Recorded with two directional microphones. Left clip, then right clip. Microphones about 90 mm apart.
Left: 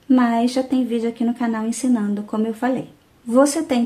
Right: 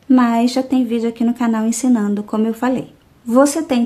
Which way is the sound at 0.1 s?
40° right (ahead or behind).